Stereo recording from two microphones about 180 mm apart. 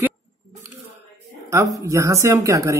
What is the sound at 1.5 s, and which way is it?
Speech, 20° right (ahead or behind).